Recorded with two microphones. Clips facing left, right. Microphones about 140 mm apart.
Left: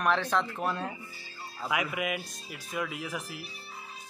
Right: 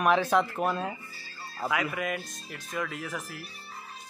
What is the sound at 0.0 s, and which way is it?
Speech, 10° right (ahead or behind).